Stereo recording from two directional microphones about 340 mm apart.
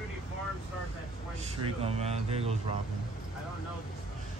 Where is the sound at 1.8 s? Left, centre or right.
Centre.